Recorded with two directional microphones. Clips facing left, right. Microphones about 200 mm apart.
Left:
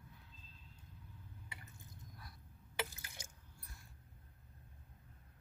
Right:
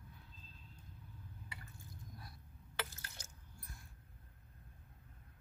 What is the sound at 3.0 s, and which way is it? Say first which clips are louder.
Water: even; 10° left (ahead or behind).